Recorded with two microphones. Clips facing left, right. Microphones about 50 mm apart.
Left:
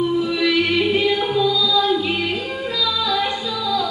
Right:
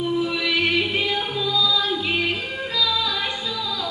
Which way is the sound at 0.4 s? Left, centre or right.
Centre.